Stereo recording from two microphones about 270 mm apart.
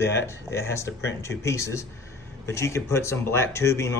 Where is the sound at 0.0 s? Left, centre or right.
Centre.